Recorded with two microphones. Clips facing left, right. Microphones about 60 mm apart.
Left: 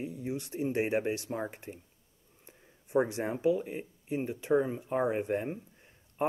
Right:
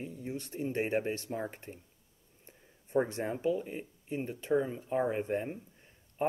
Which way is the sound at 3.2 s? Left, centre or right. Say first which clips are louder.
Left 3 dB; centre.